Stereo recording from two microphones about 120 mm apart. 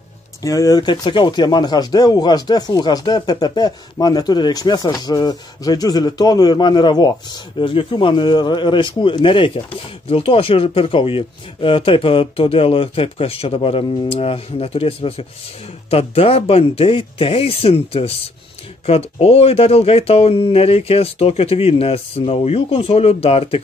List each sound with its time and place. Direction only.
0.4 s speech: 30° left (ahead or behind); by 23.6 s 55° left (ahead or behind)